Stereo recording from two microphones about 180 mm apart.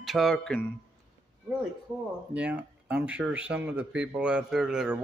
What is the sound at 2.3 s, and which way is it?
A man's voice, 5° right (ahead or behind).